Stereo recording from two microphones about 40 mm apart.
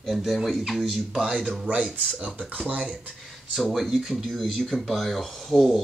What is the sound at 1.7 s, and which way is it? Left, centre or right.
Speech, right.